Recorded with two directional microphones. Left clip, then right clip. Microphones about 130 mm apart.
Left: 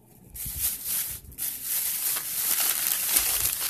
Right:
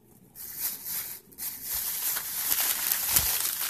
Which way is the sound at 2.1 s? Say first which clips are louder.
Left 1 dB; 30° left (ahead or behind).